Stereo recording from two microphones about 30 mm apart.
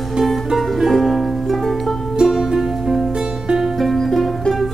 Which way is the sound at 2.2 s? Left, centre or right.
Centre.